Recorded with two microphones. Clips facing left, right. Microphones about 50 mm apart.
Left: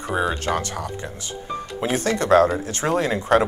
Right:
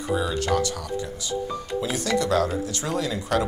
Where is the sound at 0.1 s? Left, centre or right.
Left.